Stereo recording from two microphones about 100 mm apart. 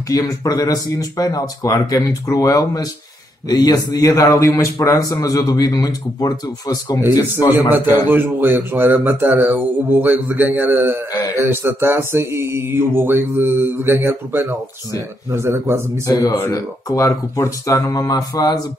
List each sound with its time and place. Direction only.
0.1 s a man's voice: 35° left (ahead or behind)
7.9 s mantra: 20° right (ahead or behind)
16.1 s a man's voice: 30° left (ahead or behind)